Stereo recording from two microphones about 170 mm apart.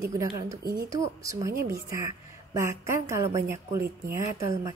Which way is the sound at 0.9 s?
20° right (ahead or behind).